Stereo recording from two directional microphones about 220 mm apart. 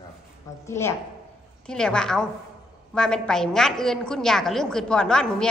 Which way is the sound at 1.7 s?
5° left (ahead or behind).